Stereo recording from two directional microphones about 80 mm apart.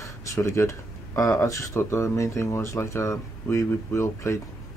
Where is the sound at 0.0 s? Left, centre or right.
Left.